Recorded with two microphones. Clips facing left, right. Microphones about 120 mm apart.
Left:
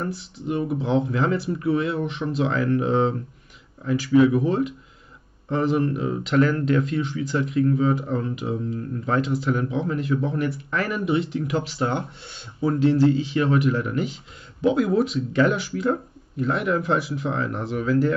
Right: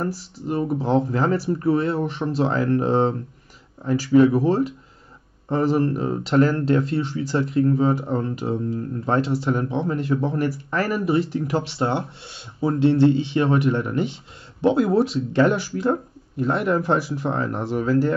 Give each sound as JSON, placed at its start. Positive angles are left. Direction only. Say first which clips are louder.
{"t": 0.0, "sound": "speech", "louder": "right 2 dB", "side_deg": -35}